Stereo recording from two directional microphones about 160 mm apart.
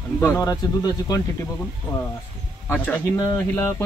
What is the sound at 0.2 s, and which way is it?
Speech, 20° left (ahead or behind).